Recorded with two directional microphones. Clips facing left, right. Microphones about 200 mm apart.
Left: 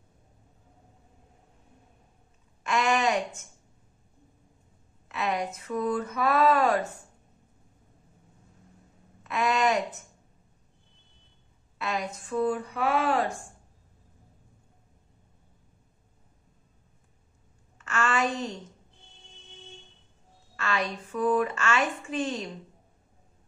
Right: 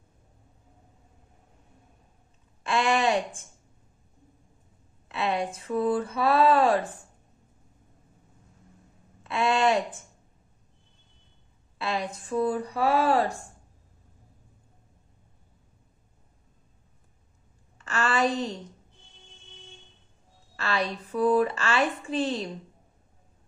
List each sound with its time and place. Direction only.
2.6 s a sound: 30° right (ahead or behind)
5.0 s a woman's voice: 30° right (ahead or behind)
9.2 s a sound: 30° right (ahead or behind)
11.8 s a woman's voice: 30° right (ahead or behind)
17.7 s a woman's voice: 35° right (ahead or behind)
20.5 s a woman's voice: 35° right (ahead or behind)